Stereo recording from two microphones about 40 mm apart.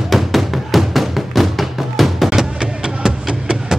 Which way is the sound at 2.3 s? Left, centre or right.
Centre.